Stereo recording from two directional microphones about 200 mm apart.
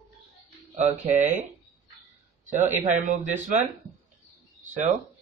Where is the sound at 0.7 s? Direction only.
35° right (ahead or behind).